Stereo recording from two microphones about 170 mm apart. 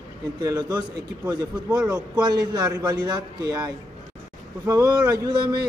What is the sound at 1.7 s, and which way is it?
Speech, 10° right (ahead or behind).